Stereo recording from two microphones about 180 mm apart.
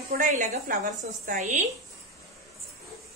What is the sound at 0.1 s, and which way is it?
A woman's voice, 45° right (ahead or behind).